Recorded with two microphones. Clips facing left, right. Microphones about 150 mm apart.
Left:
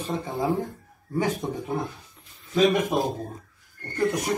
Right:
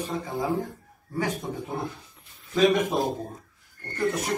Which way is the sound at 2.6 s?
Centre (ahead or behind).